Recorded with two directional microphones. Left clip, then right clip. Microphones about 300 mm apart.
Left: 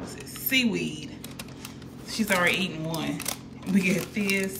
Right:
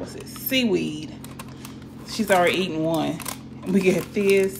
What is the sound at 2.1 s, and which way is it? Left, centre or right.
Speech, centre.